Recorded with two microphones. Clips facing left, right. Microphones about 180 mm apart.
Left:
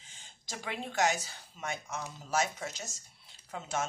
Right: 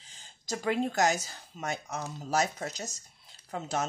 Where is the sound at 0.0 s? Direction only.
35° right (ahead or behind).